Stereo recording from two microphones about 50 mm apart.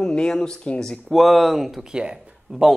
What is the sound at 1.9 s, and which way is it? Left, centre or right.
Speech, centre.